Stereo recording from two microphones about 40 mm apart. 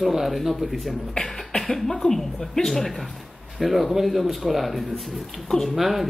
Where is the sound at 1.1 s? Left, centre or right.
Left.